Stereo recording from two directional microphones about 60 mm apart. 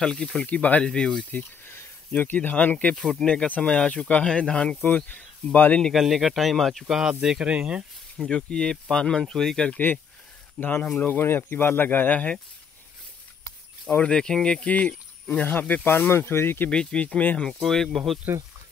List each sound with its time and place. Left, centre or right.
0.0 s speech: centre
0.5 s speech: left
1.7 s a sound: left
2.3 s speech: left
3.0 s speech: centre
3.4 s speech: left
4.8 s speech: left
5.9 s speech: centre
8.3 s speech: centre
10.6 s speech: left
14.0 s speech: centre; by 16.7 s left
16.7 s speech: centre
17.5 s speech: centre